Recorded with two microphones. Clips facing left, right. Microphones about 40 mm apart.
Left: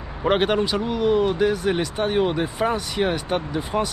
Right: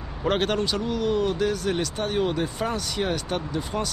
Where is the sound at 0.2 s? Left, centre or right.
Centre.